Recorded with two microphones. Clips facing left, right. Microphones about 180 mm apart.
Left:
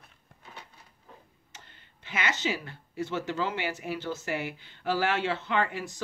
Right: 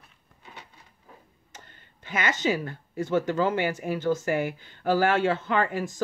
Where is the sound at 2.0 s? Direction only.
45° right (ahead or behind).